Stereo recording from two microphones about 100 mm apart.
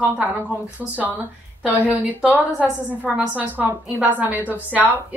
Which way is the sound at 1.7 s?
15° right (ahead or behind).